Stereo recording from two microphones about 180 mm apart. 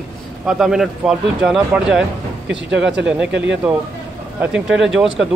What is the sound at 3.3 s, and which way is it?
Speech, 85° right.